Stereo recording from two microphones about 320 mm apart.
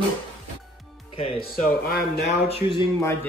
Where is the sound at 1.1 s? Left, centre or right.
Centre.